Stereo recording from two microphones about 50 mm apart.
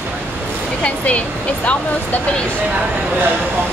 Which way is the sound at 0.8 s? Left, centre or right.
Left.